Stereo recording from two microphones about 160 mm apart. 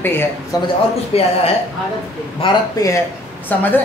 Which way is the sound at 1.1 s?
40° left (ahead or behind).